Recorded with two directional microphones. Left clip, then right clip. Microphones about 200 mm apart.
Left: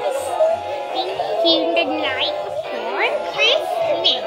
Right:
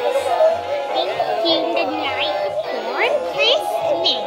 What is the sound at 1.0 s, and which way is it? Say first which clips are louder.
Music: left 1 dB; 20° left (ahead or behind).